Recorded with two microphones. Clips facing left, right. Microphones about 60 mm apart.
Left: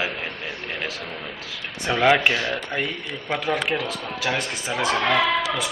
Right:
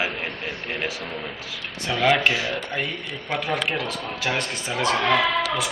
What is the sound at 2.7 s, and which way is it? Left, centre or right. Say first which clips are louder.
Speech: left 1 dB; centre.